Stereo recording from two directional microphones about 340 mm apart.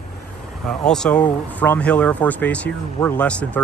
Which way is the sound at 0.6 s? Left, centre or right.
Centre.